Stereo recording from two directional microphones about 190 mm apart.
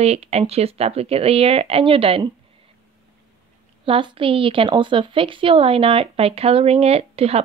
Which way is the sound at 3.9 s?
25° right (ahead or behind).